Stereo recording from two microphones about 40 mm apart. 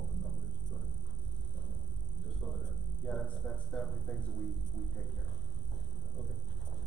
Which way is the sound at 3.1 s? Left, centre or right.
Left.